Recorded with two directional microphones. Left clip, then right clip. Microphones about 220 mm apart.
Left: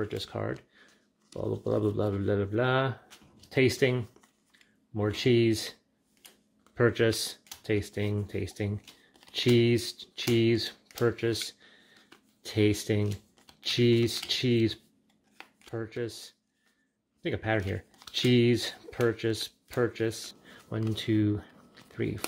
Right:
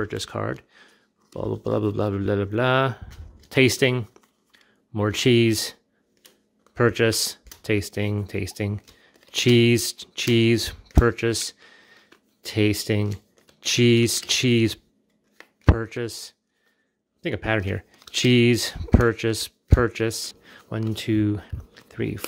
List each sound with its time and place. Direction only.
0.0 s speech: 20° right (ahead or behind)